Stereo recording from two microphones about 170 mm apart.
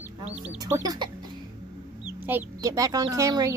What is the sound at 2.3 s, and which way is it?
Speech, 15° right (ahead or behind).